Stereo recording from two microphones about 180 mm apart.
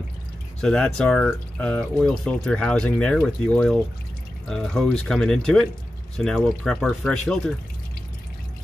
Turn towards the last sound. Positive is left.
turn(degrees=5)  # may be behind; listen again after turning